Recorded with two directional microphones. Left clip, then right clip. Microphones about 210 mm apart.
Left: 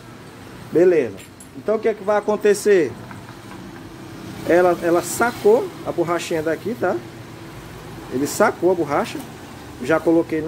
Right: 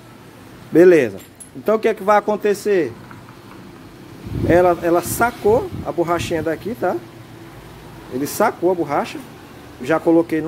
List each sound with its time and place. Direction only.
0.7 s speech: 45° right (ahead or behind)
2.2 s speech: 20° right (ahead or behind)
2.5 s speech: 10° right (ahead or behind)
4.5 s speech: 15° right (ahead or behind)
8.2 s speech: 15° right (ahead or behind)